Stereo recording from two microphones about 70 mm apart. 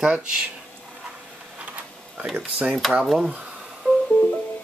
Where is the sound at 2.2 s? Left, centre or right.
Centre.